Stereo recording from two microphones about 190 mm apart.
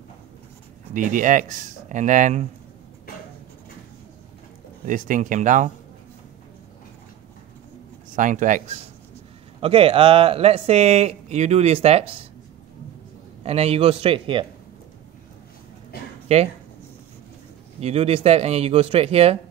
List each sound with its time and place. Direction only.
0.9 s speech: 45° right (ahead or behind)
4.8 s speech: 45° right (ahead or behind)
8.2 s speech: 45° right (ahead or behind)
13.4 s speech: 30° right (ahead or behind)
15.9 s a sound: 55° left (ahead or behind)
16.3 s speech: 30° right (ahead or behind)
17.7 s speech: 30° right (ahead or behind)